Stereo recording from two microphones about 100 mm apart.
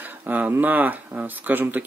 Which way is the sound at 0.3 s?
15° right (ahead or behind).